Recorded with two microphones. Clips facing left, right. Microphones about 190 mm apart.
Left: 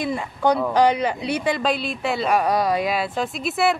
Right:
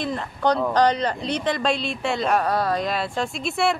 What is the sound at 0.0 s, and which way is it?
Speech, 10° left (ahead or behind).